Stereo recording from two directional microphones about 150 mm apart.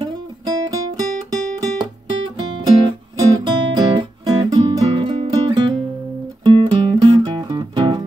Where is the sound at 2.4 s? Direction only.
30° right (ahead or behind).